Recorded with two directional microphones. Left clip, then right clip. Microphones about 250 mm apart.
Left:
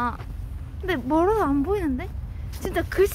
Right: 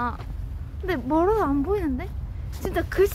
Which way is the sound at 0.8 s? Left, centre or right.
Centre.